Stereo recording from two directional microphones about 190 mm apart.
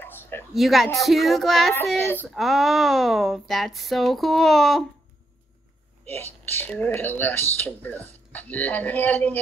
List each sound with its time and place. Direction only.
0.0 s a sound: 10° left (ahead or behind)
0.6 s speech: centre (ahead or behind)
1.8 s speech: 10° left (ahead or behind)
2.3 s speech: centre (ahead or behind)
6.0 s speech: 10° left (ahead or behind)